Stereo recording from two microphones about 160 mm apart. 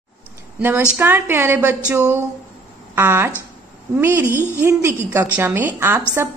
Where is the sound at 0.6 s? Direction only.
15° right (ahead or behind).